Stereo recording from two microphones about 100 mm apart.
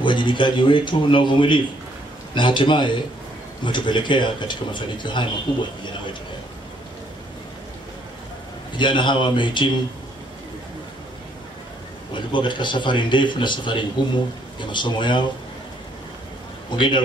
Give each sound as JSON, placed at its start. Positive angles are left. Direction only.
{"t": 0.0, "sound": "a man's voice", "side_deg": 55}
{"t": 8.7, "sound": "a man's voice", "side_deg": 50}
{"t": 12.1, "sound": "a man's voice", "side_deg": 55}
{"t": 16.7, "sound": "a man's voice", "side_deg": 50}